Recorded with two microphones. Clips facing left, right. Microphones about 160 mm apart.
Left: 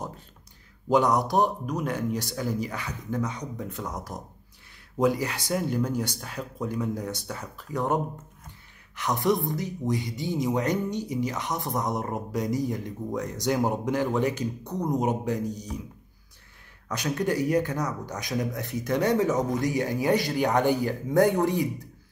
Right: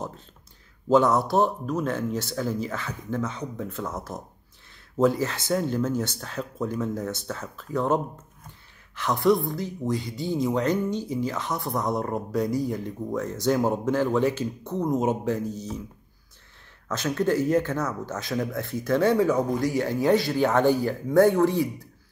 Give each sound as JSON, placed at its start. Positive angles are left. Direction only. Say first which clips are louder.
{"t": 0.8, "sound": "a man's voice", "louder": "right 2 dB", "side_deg": 15}
{"t": 16.9, "sound": "a man's voice", "louder": "right 3 dB", "side_deg": 15}